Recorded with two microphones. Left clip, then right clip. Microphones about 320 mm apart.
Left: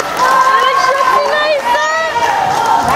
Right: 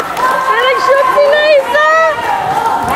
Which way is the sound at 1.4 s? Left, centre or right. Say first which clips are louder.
Right 4 dB; centre.